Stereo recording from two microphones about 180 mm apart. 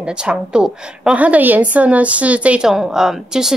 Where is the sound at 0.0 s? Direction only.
5° right (ahead or behind).